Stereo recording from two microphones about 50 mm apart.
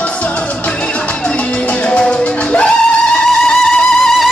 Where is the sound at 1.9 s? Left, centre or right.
Left.